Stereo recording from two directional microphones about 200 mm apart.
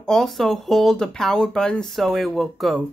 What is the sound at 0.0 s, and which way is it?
Speech, centre (ahead or behind).